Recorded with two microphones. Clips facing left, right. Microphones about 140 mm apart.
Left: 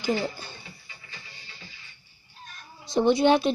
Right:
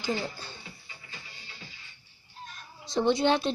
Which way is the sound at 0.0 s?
10° left (ahead or behind).